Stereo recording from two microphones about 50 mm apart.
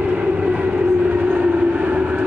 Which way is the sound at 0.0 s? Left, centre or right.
Right.